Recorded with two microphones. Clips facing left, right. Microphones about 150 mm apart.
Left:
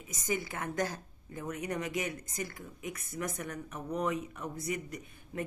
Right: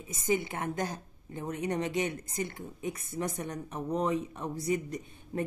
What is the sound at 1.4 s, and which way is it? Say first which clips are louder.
Speech: right 4 dB; 30° right (ahead or behind).